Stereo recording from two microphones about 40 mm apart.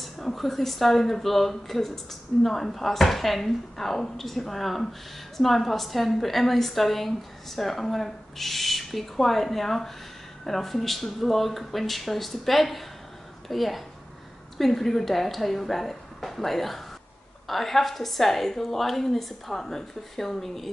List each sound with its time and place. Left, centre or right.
0.0 s speech: centre